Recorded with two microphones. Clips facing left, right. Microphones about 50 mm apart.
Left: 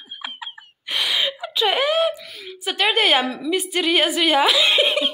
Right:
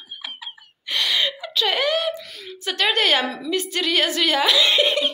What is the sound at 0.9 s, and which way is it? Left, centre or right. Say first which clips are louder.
Whimper: even; centre.